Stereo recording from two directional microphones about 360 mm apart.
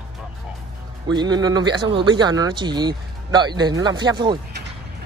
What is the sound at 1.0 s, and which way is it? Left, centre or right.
Speech, centre.